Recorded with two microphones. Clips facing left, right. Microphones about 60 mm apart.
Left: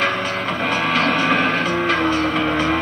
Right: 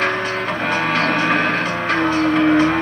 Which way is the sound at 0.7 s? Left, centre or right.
Right.